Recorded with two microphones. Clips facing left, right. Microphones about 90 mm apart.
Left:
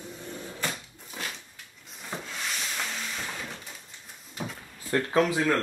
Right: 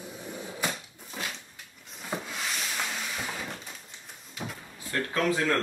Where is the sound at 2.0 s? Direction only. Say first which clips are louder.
Right 2 dB; 5° right (ahead or behind).